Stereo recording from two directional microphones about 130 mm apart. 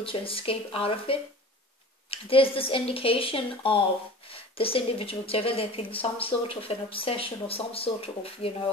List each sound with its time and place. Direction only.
0.0 s speech: 45° left (ahead or behind)